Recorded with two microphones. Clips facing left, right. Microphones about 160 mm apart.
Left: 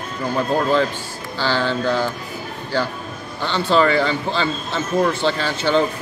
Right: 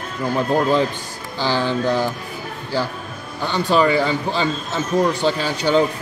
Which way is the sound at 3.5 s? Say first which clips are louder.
Even; 15° right (ahead or behind).